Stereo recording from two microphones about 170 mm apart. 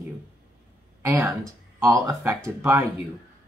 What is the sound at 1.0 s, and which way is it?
Speech, 15° right (ahead or behind).